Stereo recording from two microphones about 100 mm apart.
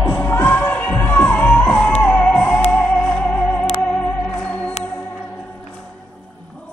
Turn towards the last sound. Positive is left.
turn(degrees=15)  # may be behind; listen again after turning